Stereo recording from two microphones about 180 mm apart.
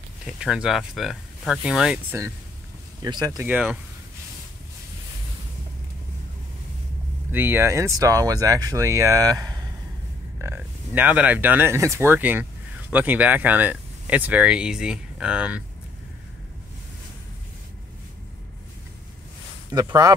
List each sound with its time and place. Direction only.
0.3 s speech: 5° right (ahead or behind)
7.3 s speech: 10° right (ahead or behind)
19.7 s speech: 20° right (ahead or behind)